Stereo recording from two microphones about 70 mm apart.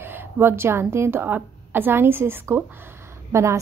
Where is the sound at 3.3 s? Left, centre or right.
Right.